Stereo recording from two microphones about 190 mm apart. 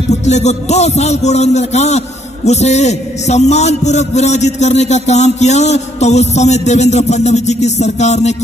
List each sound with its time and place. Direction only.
0.2 s a man's voice: 35° left (ahead or behind)